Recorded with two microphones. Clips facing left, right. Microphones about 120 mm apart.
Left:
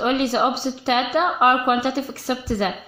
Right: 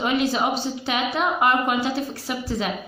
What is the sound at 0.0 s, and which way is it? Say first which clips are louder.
A woman's voice: left 2 dB; 60° left (ahead or behind).